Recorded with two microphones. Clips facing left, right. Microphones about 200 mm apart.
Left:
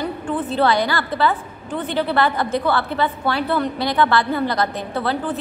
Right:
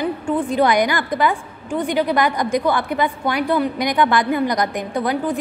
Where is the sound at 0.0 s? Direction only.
15° right (ahead or behind).